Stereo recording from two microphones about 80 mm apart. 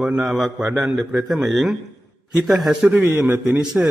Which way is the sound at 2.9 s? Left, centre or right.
Right.